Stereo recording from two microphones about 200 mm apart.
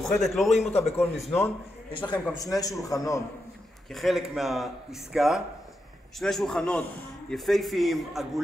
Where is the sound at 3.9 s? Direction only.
Centre (ahead or behind).